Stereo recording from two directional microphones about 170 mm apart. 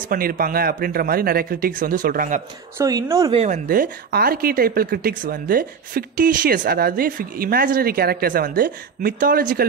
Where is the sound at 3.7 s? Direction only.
60° right (ahead or behind).